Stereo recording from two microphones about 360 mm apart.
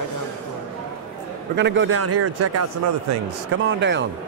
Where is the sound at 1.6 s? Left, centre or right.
Right.